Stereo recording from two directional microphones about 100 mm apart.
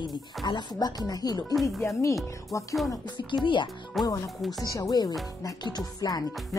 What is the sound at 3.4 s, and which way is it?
Speech, 55° left (ahead or behind).